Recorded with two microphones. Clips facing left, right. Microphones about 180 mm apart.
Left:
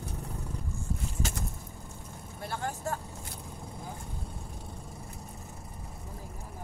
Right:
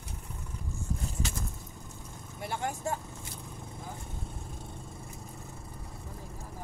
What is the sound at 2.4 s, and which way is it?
Vehicle, 15° right (ahead or behind).